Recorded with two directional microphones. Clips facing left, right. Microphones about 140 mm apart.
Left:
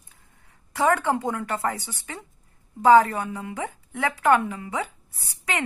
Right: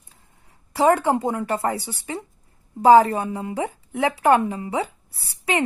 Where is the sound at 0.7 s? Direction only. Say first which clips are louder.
Right 4 dB; 15° right (ahead or behind).